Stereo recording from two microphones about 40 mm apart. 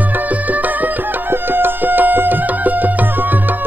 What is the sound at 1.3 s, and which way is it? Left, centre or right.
Music, right.